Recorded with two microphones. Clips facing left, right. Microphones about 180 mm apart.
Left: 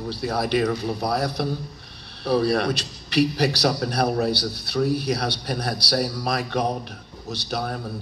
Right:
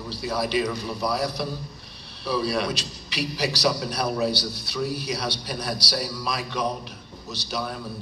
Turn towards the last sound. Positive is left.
turn(degrees=55)  # may be behind; listen again after turning